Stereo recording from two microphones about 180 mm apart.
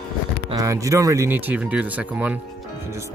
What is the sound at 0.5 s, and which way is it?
Speech, 20° right (ahead or behind).